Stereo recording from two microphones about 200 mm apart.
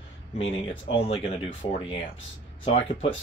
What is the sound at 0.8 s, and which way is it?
Speech, 30° left (ahead or behind).